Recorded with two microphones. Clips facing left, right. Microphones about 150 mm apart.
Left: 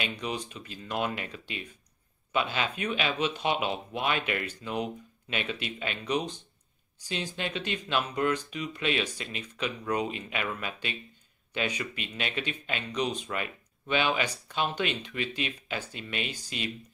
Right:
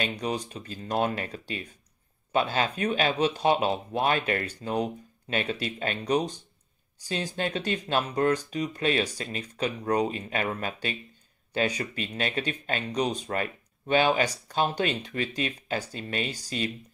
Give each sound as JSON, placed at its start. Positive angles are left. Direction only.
{"t": 0.0, "sound": "speech", "side_deg": -40}